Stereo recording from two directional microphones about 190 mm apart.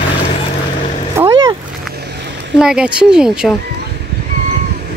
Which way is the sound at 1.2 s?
15° right (ahead or behind).